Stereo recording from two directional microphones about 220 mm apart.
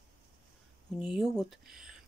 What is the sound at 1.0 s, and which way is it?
Speech, centre (ahead or behind).